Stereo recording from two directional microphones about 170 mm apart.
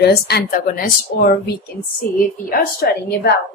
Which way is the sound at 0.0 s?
70° left (ahead or behind).